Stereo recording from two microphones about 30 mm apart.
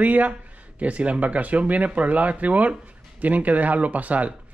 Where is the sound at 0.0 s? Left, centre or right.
Right.